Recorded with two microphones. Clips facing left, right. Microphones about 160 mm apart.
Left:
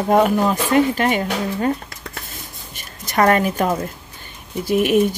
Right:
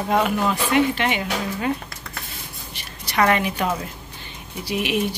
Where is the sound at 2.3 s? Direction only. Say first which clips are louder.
Left 1 dB; 45° left (ahead or behind).